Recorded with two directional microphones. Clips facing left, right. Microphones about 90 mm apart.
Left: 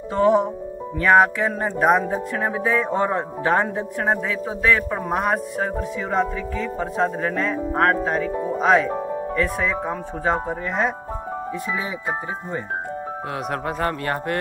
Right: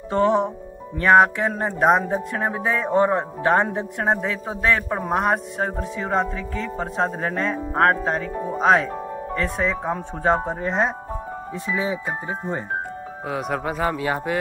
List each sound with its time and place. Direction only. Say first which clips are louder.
0.1 s a man's voice: left 1 dB; 35° right (ahead or behind)
13.3 s speech: right 3 dB; centre (ahead or behind)